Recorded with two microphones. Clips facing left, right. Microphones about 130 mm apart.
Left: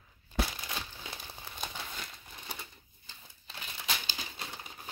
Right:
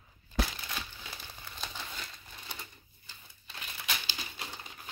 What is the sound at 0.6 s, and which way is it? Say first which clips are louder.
Crumpling: left 1 dB; 15° left (ahead or behind).